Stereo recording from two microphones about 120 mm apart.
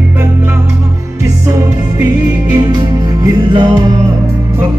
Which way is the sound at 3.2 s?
35° right (ahead or behind).